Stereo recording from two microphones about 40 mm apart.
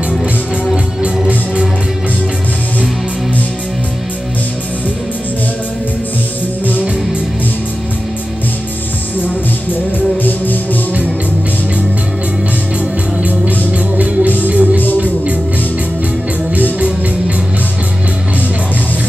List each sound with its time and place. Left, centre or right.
1.0 s music: right
9.9 s music: left
13.2 s music: right